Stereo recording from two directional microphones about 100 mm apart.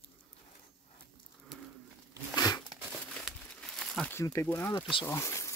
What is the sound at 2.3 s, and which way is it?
Crumpling, 40° left (ahead or behind).